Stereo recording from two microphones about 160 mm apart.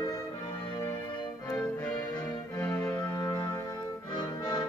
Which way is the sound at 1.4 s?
10° left (ahead or behind).